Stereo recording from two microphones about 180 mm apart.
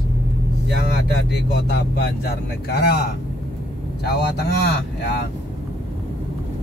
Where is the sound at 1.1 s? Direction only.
65° left (ahead or behind).